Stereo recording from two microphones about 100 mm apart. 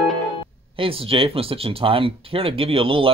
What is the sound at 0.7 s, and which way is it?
Speech, 65° right (ahead or behind).